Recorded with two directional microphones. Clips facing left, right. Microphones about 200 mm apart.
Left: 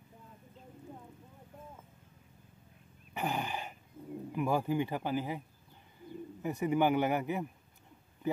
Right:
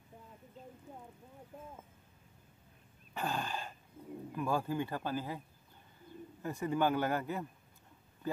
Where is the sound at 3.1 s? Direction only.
20° left (ahead or behind).